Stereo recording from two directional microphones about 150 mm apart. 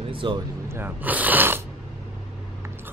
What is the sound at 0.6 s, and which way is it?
Speech, 15° right (ahead or behind).